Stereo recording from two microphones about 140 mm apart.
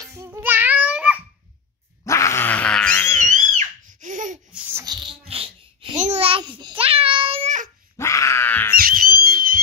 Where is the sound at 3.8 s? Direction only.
65° right (ahead or behind).